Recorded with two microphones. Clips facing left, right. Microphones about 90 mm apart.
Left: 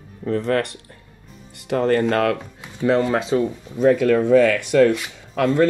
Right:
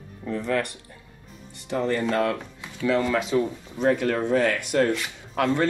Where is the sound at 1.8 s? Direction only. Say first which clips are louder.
Left 5 dB; 55° left (ahead or behind).